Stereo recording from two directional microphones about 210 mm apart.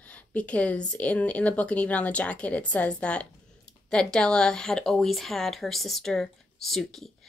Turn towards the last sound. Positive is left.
turn(degrees=0)  # may be behind; listen again after turning